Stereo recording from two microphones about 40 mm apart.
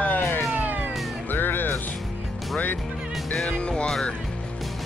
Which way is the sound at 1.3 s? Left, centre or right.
Left.